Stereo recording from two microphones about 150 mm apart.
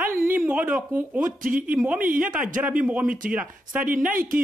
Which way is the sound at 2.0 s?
65° right (ahead or behind).